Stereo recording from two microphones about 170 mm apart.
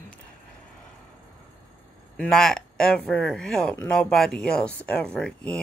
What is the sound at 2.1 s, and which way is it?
A woman's voice, 5° left (ahead or behind).